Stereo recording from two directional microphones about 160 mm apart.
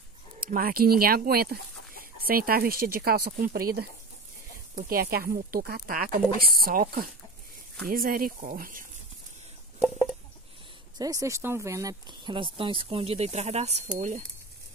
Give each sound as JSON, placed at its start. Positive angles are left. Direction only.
{"t": 0.4, "sound": "speech", "side_deg": -65}
{"t": 11.0, "sound": "speech", "side_deg": -20}